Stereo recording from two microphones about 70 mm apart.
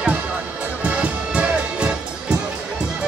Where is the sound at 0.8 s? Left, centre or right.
Centre.